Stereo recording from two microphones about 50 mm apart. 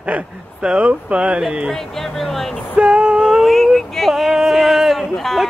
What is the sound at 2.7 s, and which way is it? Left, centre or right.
Female singing, centre.